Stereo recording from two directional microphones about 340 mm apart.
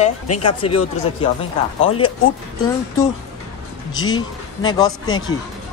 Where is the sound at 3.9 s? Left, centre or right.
Centre.